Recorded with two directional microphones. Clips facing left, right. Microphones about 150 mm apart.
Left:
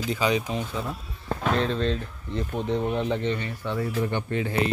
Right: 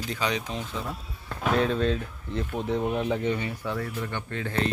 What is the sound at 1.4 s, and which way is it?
Speech, 5° right (ahead or behind).